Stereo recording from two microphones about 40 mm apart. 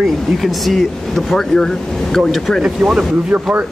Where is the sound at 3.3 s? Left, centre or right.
Right.